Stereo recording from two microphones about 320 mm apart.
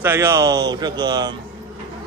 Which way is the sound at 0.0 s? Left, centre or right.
Centre.